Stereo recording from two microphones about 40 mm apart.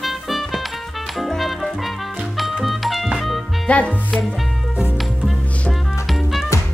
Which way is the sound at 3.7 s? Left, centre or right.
Left.